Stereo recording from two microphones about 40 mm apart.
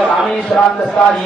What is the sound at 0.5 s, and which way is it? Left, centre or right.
Speech, centre.